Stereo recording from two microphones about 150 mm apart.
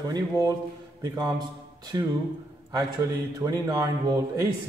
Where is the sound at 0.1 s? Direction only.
25° right (ahead or behind).